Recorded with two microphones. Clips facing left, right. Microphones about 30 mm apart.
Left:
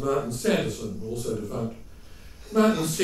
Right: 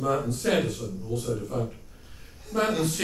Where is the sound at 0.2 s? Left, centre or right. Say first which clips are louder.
Even; centre.